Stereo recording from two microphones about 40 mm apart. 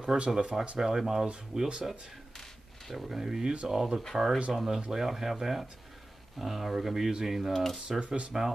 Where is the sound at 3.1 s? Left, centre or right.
Centre.